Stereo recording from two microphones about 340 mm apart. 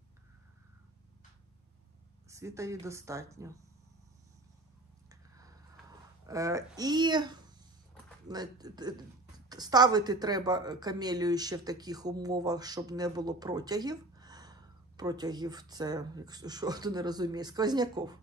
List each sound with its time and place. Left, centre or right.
2.2 s speech: centre
6.2 s speech: centre